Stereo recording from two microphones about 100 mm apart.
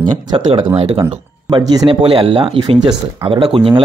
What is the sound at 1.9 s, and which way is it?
Speech, 65° right (ahead or behind).